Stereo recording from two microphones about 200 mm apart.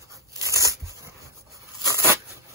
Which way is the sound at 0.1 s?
15° right (ahead or behind).